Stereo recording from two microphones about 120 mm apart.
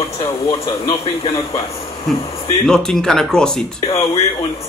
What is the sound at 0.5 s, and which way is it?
Speech, 35° left (ahead or behind).